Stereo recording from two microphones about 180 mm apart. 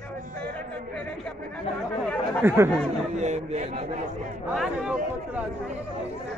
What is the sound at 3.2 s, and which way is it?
Speech, 40° right (ahead or behind).